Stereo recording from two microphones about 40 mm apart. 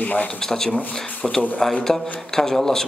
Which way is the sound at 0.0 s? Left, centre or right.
Left.